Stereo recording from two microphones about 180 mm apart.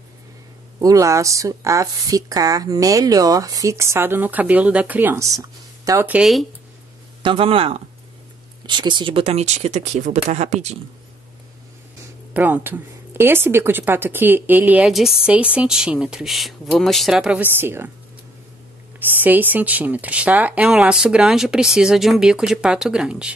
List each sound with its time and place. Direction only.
0.7 s a woman's voice: 20° right (ahead or behind)
7.2 s speech: 30° right (ahead or behind)
12.4 s a woman's voice: 10° right (ahead or behind)
18.9 s speech: 10° right (ahead or behind)